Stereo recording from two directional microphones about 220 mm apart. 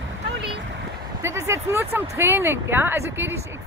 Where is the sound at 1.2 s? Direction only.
10° right (ahead or behind).